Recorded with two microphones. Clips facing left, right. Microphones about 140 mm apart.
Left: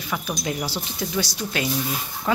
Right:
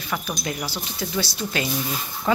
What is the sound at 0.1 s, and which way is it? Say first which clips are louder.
Speech: left 1 dB; 5° left (ahead or behind).